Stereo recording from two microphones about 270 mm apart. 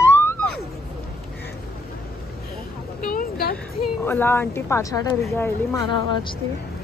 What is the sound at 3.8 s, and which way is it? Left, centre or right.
A woman's voice, centre.